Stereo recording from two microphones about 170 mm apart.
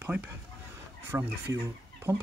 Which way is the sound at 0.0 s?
10° right (ahead or behind).